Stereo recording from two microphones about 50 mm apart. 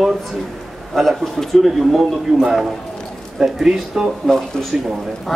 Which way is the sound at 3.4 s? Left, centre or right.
Centre.